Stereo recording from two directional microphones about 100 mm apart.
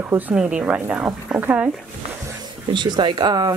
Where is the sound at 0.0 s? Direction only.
15° right (ahead or behind).